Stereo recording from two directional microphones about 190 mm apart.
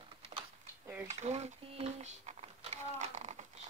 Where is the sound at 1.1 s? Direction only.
35° right (ahead or behind).